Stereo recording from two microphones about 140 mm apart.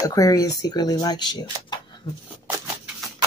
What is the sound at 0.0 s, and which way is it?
Speech, 25° left (ahead or behind).